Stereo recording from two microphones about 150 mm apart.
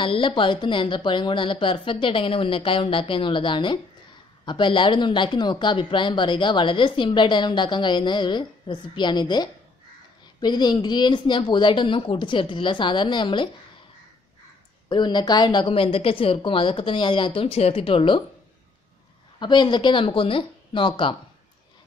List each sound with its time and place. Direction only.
0.0 s speech: 35° left (ahead or behind)
14.9 s speech: 30° left (ahead or behind)
19.4 s speech: 30° left (ahead or behind)